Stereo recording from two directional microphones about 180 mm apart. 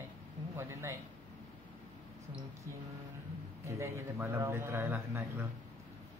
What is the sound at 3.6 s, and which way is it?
Speech, 15° right (ahead or behind).